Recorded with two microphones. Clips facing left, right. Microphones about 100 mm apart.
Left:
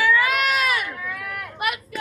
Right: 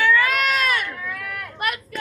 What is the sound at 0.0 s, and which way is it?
Sheep, 5° left (ahead or behind).